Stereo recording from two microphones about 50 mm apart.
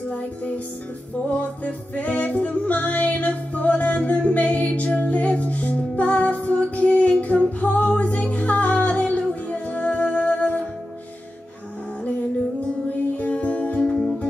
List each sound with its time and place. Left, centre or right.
1.3 s music: left
13.0 s music: left
13.7 s music: centre